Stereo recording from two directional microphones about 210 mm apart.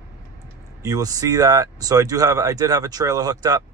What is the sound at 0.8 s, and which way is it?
Speech, 15° right (ahead or behind).